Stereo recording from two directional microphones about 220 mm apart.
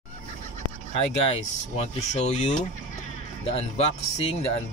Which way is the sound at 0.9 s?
25° left (ahead or behind).